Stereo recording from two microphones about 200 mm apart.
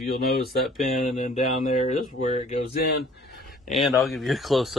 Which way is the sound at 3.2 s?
50° left (ahead or behind).